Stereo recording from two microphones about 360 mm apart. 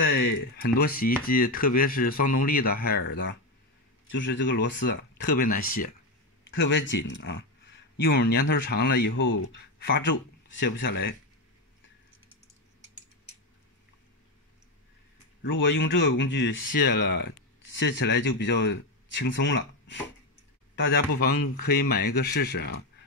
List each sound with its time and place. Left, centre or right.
0.6 s speech: left
15.6 s speech: left
21.2 s speech: left